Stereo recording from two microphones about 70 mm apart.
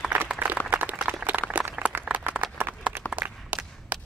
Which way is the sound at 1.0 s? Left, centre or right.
Right.